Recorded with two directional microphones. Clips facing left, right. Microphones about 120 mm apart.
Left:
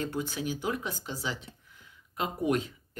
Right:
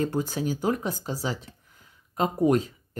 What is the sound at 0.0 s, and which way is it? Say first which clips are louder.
Speech: right 6 dB; 40° right (ahead or behind).